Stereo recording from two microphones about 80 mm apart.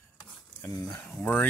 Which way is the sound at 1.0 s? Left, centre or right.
Centre.